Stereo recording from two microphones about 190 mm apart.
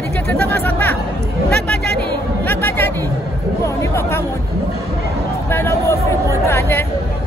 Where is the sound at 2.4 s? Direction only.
10° left (ahead or behind).